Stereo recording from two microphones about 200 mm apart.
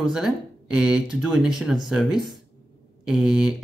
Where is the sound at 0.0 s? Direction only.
5° right (ahead or behind).